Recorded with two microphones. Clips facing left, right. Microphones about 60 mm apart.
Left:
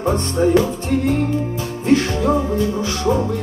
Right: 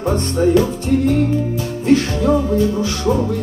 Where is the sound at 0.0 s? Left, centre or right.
Left.